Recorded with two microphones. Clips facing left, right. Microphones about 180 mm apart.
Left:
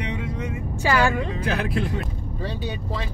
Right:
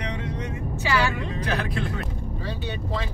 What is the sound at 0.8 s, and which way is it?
Speech, 50° left (ahead or behind).